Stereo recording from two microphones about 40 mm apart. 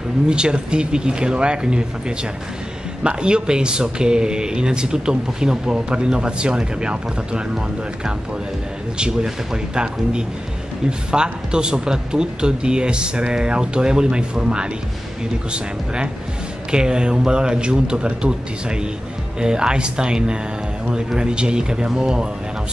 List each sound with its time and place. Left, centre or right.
0.3 s a man's voice: right